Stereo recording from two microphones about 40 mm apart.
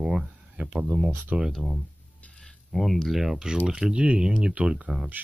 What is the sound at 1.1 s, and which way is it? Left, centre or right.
Speech, right.